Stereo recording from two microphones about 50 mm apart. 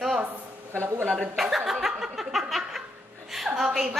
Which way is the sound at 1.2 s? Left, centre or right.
Centre.